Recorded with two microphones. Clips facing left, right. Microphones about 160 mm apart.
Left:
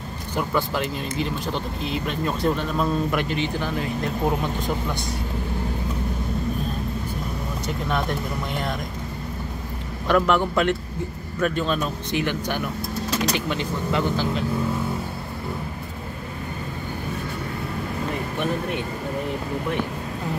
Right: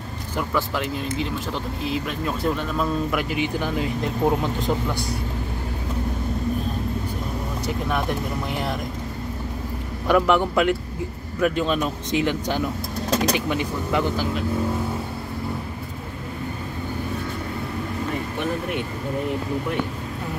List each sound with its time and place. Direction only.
0.4 s speech: centre (ahead or behind); by 4.7 s 20° right (ahead or behind)
8.5 s speech: 10° right (ahead or behind)
10.0 s speech: 10° right (ahead or behind)